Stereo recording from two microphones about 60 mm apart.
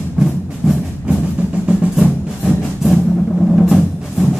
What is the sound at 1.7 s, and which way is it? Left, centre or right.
Music, centre.